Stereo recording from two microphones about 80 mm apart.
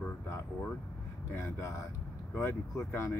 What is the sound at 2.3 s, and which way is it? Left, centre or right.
Speech, left.